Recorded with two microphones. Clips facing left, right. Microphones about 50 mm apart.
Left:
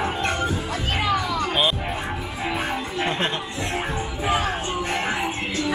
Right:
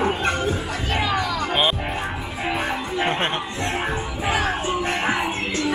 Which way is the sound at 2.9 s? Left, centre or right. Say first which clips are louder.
Right 3 dB; right.